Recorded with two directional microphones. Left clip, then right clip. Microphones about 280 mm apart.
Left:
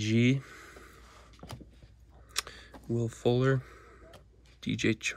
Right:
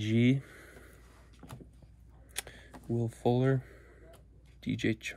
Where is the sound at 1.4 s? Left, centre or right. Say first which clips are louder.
Left 4 dB; left.